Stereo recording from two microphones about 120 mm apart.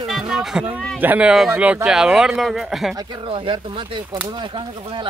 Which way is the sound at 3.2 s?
45° right (ahead or behind).